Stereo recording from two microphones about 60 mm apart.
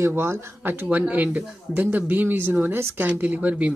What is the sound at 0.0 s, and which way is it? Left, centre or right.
Speech, right.